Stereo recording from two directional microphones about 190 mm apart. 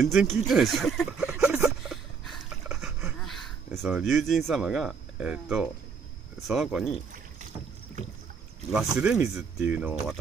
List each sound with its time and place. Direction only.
0.1 s a sound: centre (ahead or behind)
6.4 s speech: centre (ahead or behind)
8.7 s speech: 5° right (ahead or behind)